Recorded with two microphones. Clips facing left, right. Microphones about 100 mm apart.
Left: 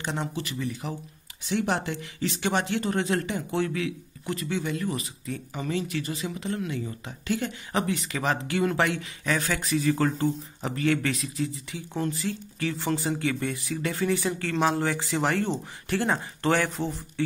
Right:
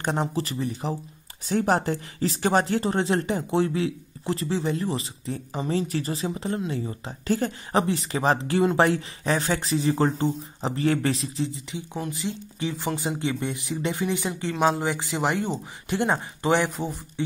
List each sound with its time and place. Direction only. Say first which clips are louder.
0.0 s speech: right 5 dB; 40° right (ahead or behind)
11.9 s speech: left 2 dB; 15° right (ahead or behind)